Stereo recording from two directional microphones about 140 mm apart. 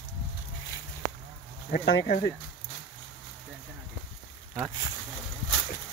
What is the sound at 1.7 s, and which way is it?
Speech, 75° left (ahead or behind).